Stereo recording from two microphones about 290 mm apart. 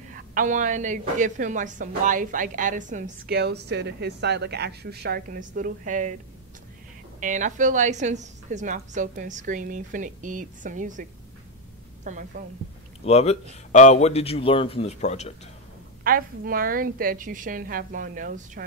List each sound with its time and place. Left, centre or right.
0.1 s a woman's voice: right
7.2 s a woman's voice: right
13.0 s speech: left
16.0 s a woman's voice: right